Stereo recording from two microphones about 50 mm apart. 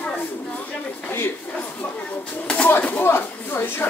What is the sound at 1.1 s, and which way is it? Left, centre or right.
Speech, left.